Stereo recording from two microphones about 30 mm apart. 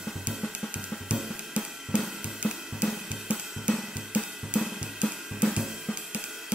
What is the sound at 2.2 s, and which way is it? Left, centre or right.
Cymbal, right.